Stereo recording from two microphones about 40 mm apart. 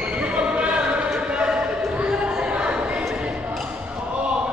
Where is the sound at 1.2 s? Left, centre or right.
Right.